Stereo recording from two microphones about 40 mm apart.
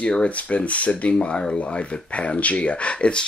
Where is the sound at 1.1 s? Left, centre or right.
Left.